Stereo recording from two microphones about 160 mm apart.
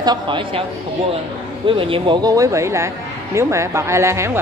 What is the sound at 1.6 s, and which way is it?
Speech, 35° right (ahead or behind).